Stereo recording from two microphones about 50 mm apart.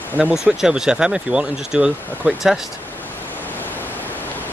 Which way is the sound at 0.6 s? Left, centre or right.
Centre.